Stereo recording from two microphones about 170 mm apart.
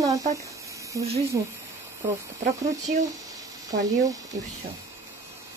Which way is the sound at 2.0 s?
15° right (ahead or behind).